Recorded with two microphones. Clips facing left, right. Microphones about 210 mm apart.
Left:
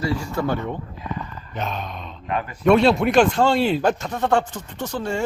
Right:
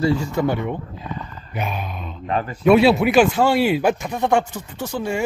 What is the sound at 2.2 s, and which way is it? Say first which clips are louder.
Speech: right 3 dB; 35° right (ahead or behind).